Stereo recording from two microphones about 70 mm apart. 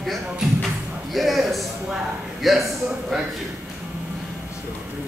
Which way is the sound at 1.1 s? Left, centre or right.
Centre.